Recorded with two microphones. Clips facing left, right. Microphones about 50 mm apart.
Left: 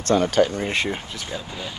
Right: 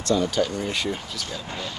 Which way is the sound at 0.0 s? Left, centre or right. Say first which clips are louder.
Left 4 dB; left.